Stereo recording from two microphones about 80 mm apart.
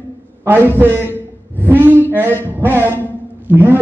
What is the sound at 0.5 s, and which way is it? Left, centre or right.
Speech, right.